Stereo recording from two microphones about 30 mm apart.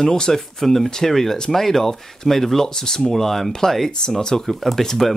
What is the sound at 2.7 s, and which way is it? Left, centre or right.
Speech, left.